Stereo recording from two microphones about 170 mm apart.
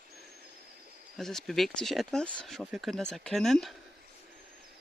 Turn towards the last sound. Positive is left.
turn(degrees=0)  # may be behind; listen again after turning